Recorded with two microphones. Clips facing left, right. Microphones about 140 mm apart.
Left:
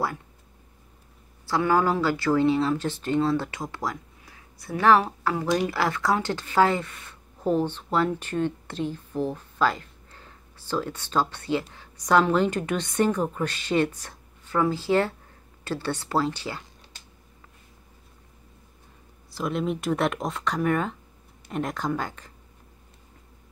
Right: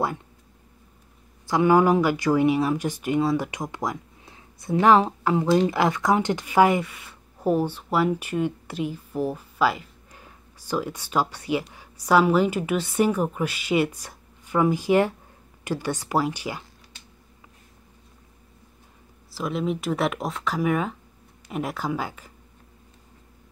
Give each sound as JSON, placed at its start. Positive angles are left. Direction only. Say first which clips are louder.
{"t": 1.5, "sound": "speech", "louder": "right 4 dB", "side_deg": -15}
{"t": 19.3, "sound": "speech", "louder": "right 1 dB", "side_deg": 0}